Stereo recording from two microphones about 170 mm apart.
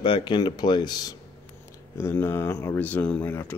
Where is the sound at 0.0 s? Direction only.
25° left (ahead or behind).